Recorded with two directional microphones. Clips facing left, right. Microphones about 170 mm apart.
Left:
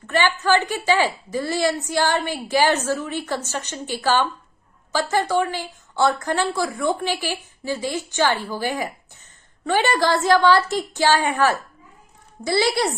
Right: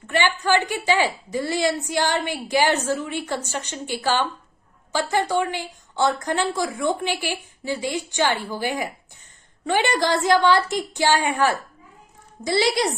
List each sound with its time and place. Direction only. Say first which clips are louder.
0.0 s a woman's voice: left 2 dB; 15° right (ahead or behind)